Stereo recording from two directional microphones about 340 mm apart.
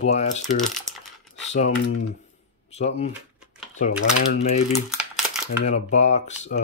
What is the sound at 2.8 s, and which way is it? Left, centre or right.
Speech, centre.